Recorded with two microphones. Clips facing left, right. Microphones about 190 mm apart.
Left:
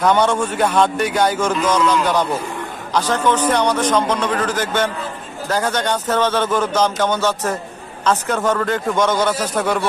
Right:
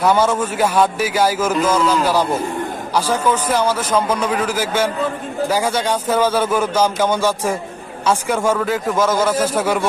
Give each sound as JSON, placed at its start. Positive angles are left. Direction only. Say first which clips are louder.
{"t": 0.0, "sound": "a man's voice", "louder": "even", "side_deg": -5}